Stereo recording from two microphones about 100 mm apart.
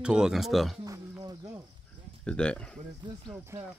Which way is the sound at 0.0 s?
5° right (ahead or behind).